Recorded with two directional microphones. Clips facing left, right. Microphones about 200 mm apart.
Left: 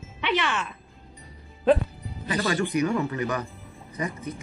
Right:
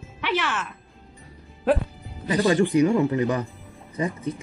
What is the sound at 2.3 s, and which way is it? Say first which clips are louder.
Speech: right 6 dB; 25° right (ahead or behind).